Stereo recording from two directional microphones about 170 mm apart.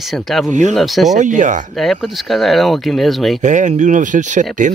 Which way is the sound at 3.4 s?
45° right (ahead or behind).